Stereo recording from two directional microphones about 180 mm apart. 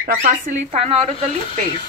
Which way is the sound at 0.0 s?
45° right (ahead or behind).